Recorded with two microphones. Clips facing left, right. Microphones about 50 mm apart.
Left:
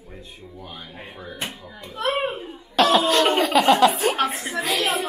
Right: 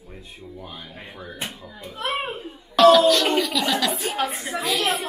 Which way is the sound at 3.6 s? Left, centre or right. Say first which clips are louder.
Left 7 dB; left.